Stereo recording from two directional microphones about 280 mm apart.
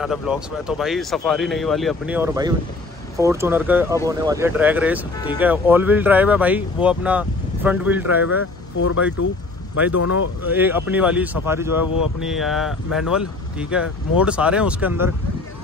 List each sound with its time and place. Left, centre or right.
0.0 s speech: centre
8.7 s speech: left
10.4 s speech: centre